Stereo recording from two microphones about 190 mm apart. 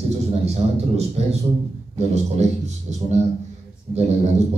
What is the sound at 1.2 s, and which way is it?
A man's voice, 35° right (ahead or behind).